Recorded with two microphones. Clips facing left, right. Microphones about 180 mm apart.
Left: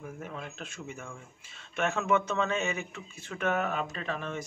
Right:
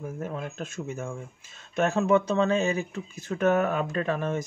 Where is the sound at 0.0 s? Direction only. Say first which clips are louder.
Right 7 dB; 40° right (ahead or behind).